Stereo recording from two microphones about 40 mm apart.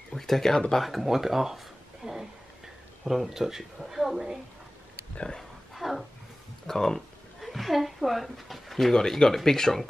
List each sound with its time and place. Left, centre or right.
0.1 s speech: centre
0.7 s a woman's voice: centre
2.0 s a sound: centre
3.1 s a woman's voice: centre
5.1 s speech: left
5.8 s a sound: centre
6.7 s speech: centre
7.3 s a sound: centre
8.9 s speech: centre